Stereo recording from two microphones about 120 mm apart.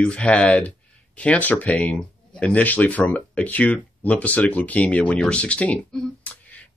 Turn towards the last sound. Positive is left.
turn(degrees=10)  # may be behind; listen again after turning